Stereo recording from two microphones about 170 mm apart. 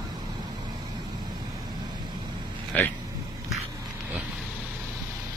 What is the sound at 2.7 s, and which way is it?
Speech, 10° left (ahead or behind).